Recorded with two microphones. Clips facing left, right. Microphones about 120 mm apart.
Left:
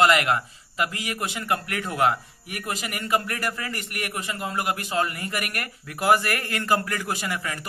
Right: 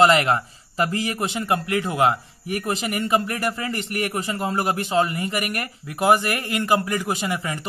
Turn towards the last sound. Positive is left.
turn(degrees=-20)  # may be behind; listen again after turning